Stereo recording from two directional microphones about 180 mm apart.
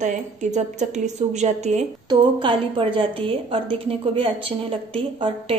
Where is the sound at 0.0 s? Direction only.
40° right (ahead or behind).